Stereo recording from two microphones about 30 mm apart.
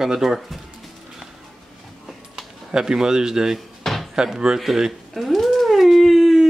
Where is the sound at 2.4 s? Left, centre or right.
Right.